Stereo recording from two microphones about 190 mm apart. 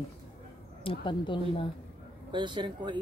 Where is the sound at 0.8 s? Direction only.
25° left (ahead or behind).